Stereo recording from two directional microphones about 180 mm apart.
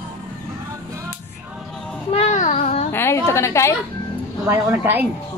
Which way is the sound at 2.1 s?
40° left (ahead or behind).